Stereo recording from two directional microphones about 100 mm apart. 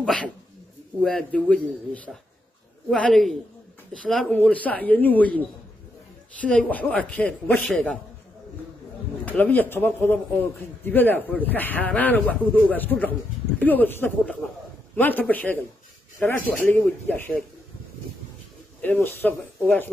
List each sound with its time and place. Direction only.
0.0 s speech: centre (ahead or behind)
6.4 s speech: 15° left (ahead or behind)
9.4 s speech: 20° left (ahead or behind)
18.8 s speech: 15° left (ahead or behind)